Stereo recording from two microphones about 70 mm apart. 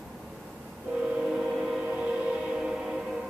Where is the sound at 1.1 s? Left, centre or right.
Centre.